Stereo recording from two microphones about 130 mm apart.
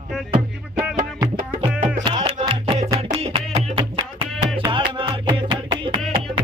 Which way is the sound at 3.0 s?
50° right (ahead or behind).